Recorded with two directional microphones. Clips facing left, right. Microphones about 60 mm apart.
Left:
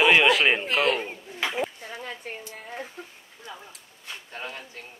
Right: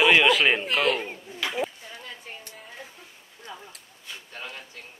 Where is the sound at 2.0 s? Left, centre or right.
Left.